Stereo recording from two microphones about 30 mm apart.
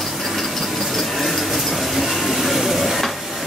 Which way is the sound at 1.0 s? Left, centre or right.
Centre.